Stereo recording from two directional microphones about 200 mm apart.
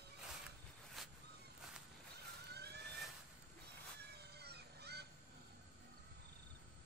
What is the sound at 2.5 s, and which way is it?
Vehicle, 55° right (ahead or behind).